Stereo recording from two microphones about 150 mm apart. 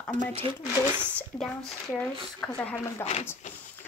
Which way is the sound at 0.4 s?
35° right (ahead or behind).